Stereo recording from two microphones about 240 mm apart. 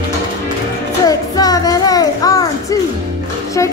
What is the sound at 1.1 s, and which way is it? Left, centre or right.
Music, centre.